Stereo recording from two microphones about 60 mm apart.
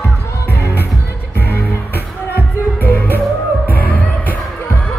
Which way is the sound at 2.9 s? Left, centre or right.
Left.